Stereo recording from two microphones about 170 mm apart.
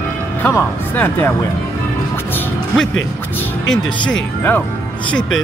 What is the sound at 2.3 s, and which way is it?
Music, 10° left (ahead or behind).